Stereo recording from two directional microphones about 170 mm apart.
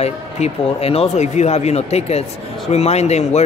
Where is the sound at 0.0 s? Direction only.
35° left (ahead or behind).